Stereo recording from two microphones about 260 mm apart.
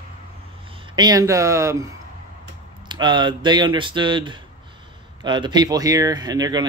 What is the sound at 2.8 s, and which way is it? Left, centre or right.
Speech, centre.